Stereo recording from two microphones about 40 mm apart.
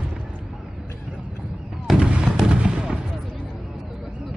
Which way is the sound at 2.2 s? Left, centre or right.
Centre.